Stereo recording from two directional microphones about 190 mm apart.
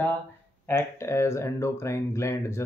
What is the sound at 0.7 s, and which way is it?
Speech, 15° left (ahead or behind).